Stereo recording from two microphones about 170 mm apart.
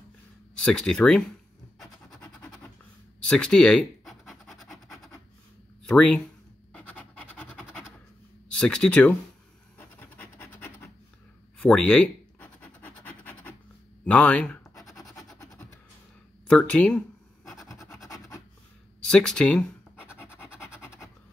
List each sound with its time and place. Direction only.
0.7 s speech: 5° left (ahead or behind)
3.2 s scratch: 5° left (ahead or behind)
5.9 s speech: 5° left (ahead or behind)
8.5 s speech: 5° left (ahead or behind)
9.8 s scratch: 10° left (ahead or behind)
14.0 s speech: 5° left (ahead or behind)
15.3 s music: 20° left (ahead or behind)
16.4 s speech: 5° left (ahead or behind)
17.5 s scratch: centre (ahead or behind)
19.0 s speech: 5° left (ahead or behind)
20.2 s scratch: 15° left (ahead or behind)